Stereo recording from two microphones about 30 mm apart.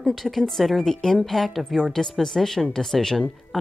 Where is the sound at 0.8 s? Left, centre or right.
Centre.